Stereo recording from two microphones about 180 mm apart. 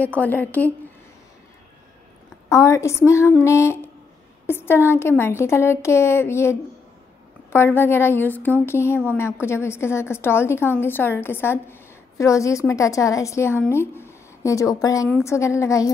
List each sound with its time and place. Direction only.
0.0 s a woman's voice: 10° left (ahead or behind)
2.5 s a woman's voice: 15° left (ahead or behind)